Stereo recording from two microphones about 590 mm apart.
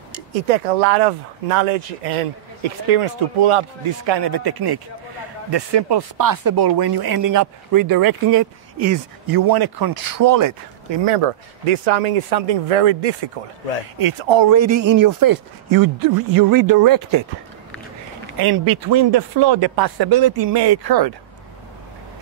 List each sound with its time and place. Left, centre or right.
0.5 s speech: right
2.6 s speech: right
10.9 s speech: right
13.9 s speech: right
14.5 s speech: right
18.5 s speech: right